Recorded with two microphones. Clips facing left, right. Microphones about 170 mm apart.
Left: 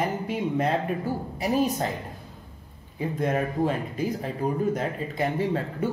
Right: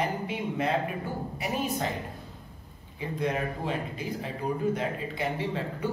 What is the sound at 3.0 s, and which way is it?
Speech, 45° left (ahead or behind).